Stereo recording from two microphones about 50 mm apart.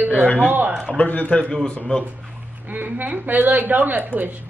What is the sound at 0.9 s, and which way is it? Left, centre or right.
A man's voice, left.